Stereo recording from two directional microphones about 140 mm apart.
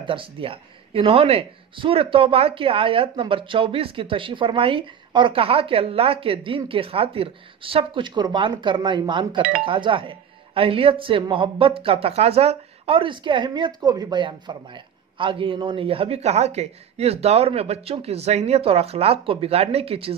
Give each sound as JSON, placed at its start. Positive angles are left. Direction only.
{"t": 0.0, "sound": "speech", "side_deg": -40}